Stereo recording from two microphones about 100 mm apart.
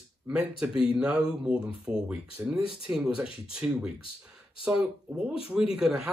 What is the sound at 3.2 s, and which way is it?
Speech, 65° left (ahead or behind).